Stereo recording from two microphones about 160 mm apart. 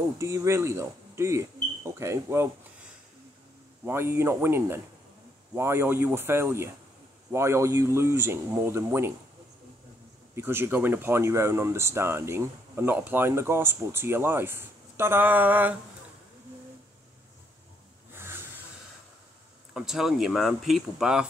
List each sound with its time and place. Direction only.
0.2 s speech: 20° right (ahead or behind)
3.8 s speech: 15° right (ahead or behind)
10.3 s speech: 15° right (ahead or behind)
18.1 s vehicle: 15° right (ahead or behind)
19.7 s speech: 5° right (ahead or behind)